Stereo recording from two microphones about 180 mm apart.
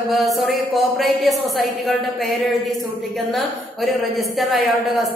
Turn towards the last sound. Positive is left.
turn(degrees=0)  # may be behind; listen again after turning